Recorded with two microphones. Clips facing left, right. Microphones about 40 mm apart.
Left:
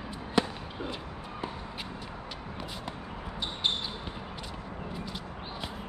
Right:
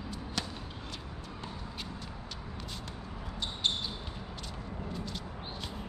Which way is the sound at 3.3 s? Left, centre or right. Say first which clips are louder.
Left 2 dB; centre.